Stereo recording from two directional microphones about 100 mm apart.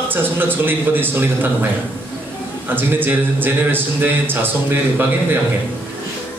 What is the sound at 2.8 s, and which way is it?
A man's voice, 20° right (ahead or behind).